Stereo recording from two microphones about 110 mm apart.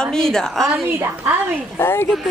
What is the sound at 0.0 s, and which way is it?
Speech, 5° left (ahead or behind).